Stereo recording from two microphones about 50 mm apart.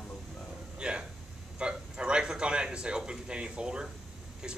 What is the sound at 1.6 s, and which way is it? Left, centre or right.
A man's voice, centre.